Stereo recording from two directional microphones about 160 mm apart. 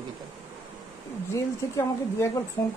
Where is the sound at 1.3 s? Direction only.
20° left (ahead or behind).